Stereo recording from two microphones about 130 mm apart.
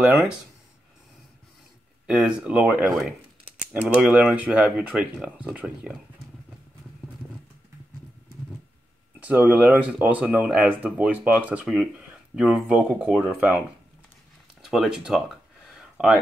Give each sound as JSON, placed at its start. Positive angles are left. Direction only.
{"t": 0.0, "sound": "speech", "side_deg": -5}
{"t": 2.0, "sound": "speech", "side_deg": -5}
{"t": 9.2, "sound": "speech", "side_deg": -10}
{"t": 14.6, "sound": "a sound", "side_deg": -5}